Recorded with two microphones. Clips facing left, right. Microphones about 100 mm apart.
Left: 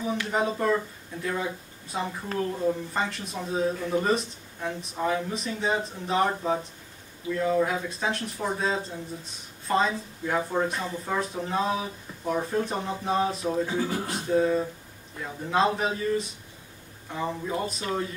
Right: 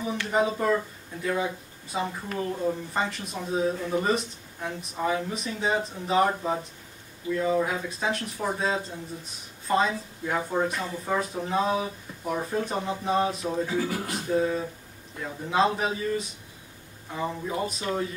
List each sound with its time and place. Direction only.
0.0 s speech: centre (ahead or behind)
13.7 s speech: 30° left (ahead or behind)
14.3 s speech: centre (ahead or behind)